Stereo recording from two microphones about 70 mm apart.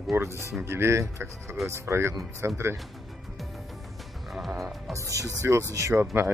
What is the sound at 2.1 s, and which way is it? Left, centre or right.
Speech, right.